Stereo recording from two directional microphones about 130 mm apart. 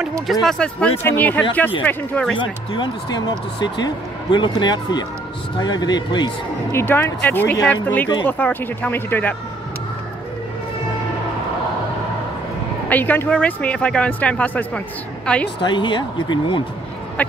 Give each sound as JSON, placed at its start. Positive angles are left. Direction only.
{"t": 0.3, "sound": "speech", "side_deg": 5}
{"t": 2.3, "sound": "speech", "side_deg": 40}
{"t": 6.7, "sound": "speech", "side_deg": 20}
{"t": 12.9, "sound": "speech", "side_deg": 15}
{"t": 15.6, "sound": "speech", "side_deg": 35}
{"t": 17.2, "sound": "speech", "side_deg": 10}